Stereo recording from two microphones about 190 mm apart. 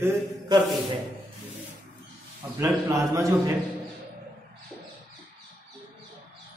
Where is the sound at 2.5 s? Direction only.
15° right (ahead or behind).